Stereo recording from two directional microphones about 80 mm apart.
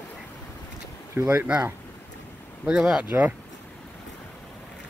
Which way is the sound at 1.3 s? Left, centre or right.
Right.